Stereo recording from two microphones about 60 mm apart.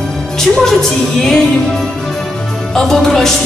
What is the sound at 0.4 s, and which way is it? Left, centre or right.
Speech, centre.